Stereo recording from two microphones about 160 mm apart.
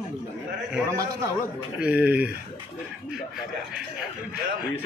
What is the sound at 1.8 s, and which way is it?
Speech, 10° right (ahead or behind).